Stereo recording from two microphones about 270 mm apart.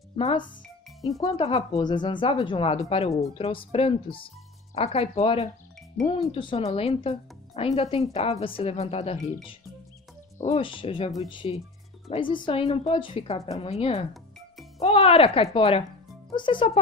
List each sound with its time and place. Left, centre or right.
0.1 s speech: centre
10.4 s speech: left